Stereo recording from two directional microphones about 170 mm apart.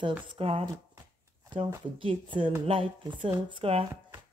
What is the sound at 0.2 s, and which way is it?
Speech, 30° right (ahead or behind).